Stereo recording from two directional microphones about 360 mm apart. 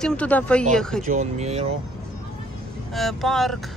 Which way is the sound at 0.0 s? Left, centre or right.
Centre.